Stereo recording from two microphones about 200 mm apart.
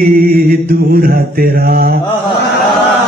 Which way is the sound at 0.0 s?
45° right (ahead or behind).